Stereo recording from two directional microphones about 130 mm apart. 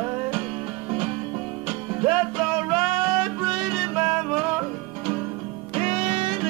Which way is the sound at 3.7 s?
40° right (ahead or behind).